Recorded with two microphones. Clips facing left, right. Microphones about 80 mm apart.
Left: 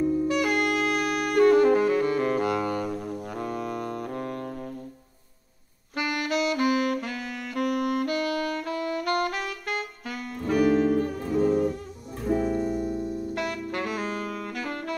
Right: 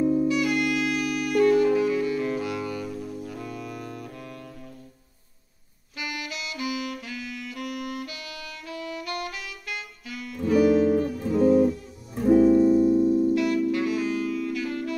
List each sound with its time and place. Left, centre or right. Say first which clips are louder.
0.3 s saxophone: even; left
5.9 s saxophone: left 8 dB; left
12.2 s music: right 8 dB; centre
12.8 s saxophone: right 10 dB; left